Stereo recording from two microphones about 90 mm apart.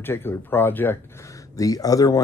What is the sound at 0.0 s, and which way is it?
Speech, 25° left (ahead or behind).